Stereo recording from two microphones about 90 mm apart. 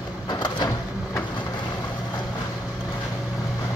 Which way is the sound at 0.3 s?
50° left (ahead or behind).